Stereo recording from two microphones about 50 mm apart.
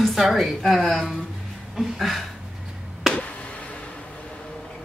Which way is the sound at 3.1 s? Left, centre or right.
Left.